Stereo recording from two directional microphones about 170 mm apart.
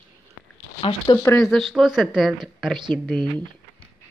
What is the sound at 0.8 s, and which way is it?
Speech, 30° left (ahead or behind).